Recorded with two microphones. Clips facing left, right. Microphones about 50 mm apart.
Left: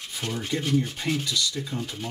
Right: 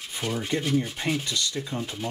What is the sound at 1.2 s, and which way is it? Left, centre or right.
Speech, right.